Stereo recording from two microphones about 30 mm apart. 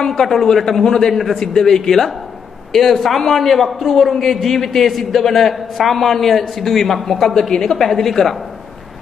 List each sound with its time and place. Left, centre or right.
0.0 s a man's voice: centre
0.7 s a man's voice: centre
1.1 s a man's voice: centre
1.5 s a man's voice: centre